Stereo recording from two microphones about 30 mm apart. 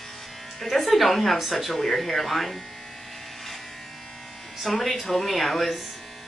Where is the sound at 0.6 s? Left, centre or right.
Centre.